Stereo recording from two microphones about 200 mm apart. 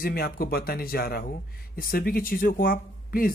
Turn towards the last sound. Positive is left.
turn(degrees=45)  # may be behind; listen again after turning